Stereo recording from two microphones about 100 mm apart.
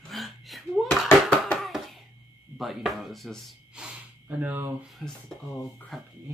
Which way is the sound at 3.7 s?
10° right (ahead or behind).